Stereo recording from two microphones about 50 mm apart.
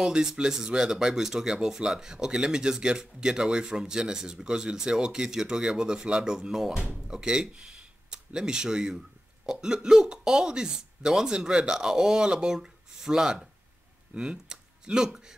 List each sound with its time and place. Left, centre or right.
0.0 s speech: centre